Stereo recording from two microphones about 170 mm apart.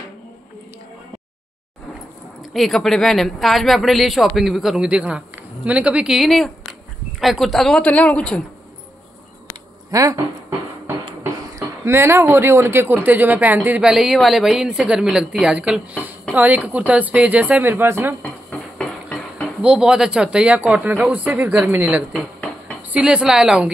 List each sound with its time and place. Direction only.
2.5 s speech: centre (ahead or behind)
9.8 s speech: 20° right (ahead or behind)
11.8 s speech: 15° right (ahead or behind)
18.2 s a sound: 5° left (ahead or behind)
19.6 s speech: 5° right (ahead or behind)